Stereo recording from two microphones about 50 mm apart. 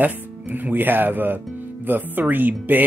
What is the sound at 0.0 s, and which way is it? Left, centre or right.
Speech, right.